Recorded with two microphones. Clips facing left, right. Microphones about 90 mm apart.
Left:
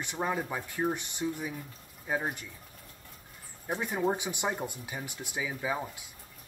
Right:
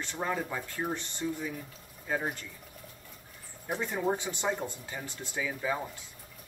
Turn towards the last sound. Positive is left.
turn(degrees=10)  # may be behind; listen again after turning